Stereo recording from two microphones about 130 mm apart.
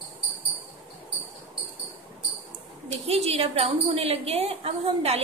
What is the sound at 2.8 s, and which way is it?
A woman's voice, 55° right (ahead or behind).